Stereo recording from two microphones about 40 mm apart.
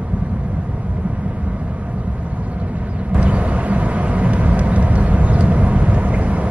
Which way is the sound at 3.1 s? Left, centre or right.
Right.